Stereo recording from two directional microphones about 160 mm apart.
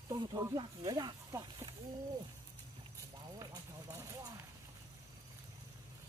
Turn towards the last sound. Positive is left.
turn(degrees=-20)  # may be behind; listen again after turning